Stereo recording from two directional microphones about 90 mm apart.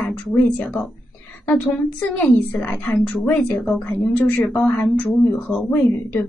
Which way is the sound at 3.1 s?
10° left (ahead or behind).